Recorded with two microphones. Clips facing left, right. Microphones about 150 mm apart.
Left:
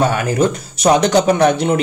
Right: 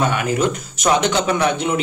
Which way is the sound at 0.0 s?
40° left (ahead or behind).